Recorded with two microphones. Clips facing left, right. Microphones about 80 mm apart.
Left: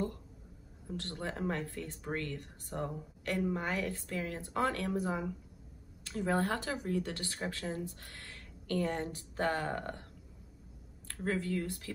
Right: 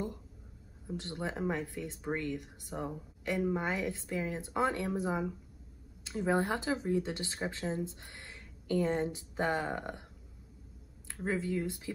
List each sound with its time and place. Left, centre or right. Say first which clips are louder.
0.8 s speech: right 2 dB; centre
11.1 s speech: right 1 dB; centre